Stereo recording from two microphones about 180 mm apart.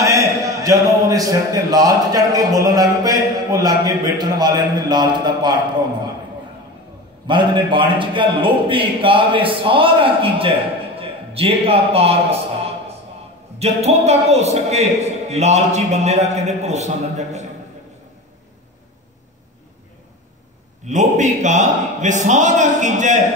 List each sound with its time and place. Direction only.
0.0 s a man's voice: 15° right (ahead or behind)
7.2 s a man's voice: 25° right (ahead or behind)
11.0 s a sound: 30° right (ahead or behind)
13.6 s a man's voice: 35° right (ahead or behind)
20.8 s a man's voice: 40° right (ahead or behind)